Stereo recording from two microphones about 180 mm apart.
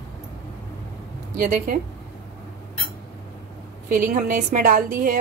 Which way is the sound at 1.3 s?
50° right (ahead or behind).